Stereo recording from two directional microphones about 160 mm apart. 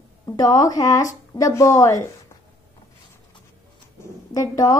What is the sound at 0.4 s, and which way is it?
A woman's voice, 25° left (ahead or behind).